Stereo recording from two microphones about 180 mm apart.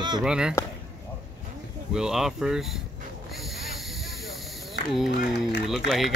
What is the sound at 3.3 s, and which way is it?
Hiss, centre (ahead or behind).